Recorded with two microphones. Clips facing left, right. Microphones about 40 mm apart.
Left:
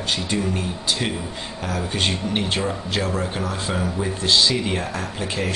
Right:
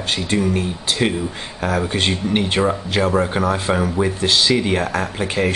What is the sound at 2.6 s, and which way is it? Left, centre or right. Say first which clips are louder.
Speech: right 6 dB; right.